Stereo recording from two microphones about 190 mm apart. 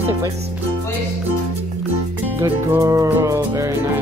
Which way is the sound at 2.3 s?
15° right (ahead or behind).